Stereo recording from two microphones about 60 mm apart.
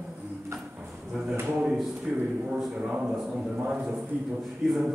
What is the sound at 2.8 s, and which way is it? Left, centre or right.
A man's voice, centre.